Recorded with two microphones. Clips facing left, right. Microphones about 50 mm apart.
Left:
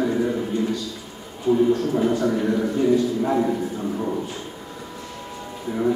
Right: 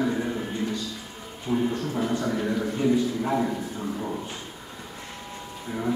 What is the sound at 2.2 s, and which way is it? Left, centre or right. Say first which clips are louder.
A man's voice: left 5 dB; centre.